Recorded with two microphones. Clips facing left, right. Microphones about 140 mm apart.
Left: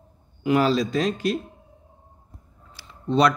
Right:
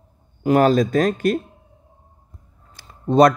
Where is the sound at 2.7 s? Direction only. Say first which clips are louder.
Right 7 dB; 45° right (ahead or behind).